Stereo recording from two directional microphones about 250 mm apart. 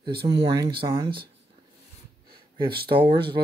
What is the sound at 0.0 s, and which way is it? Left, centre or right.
Speech, centre.